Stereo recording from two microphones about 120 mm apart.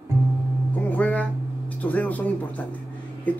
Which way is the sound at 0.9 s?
10° left (ahead or behind).